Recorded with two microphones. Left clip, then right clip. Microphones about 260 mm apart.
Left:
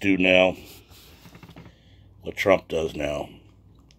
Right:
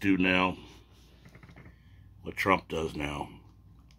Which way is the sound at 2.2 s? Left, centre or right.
Centre.